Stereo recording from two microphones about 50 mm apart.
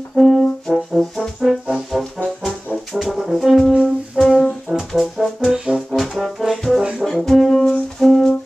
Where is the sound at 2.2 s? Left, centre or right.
Centre.